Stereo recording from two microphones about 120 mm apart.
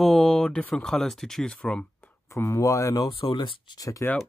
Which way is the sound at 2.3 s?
25° left (ahead or behind).